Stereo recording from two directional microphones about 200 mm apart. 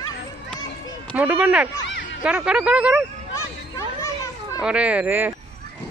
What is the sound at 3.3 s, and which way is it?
Children playing, 15° left (ahead or behind).